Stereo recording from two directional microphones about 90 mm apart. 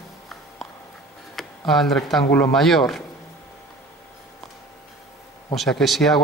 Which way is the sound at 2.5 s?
Centre (ahead or behind).